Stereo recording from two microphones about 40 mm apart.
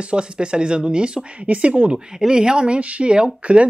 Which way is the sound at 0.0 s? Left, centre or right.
Right.